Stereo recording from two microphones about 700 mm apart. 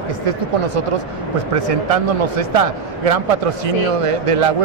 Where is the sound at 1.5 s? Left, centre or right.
Right.